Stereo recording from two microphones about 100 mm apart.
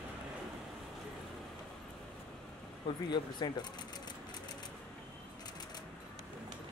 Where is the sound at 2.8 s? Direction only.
45° left (ahead or behind).